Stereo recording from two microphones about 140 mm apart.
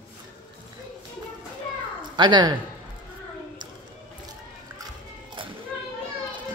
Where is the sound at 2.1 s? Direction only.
30° right (ahead or behind).